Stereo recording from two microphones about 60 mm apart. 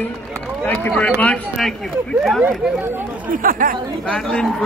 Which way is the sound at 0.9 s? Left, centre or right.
Centre.